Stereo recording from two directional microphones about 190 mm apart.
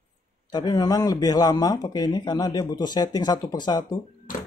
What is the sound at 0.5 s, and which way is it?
A man's voice, 20° left (ahead or behind).